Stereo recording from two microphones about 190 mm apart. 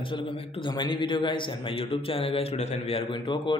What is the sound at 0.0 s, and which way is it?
A man's voice, 25° left (ahead or behind).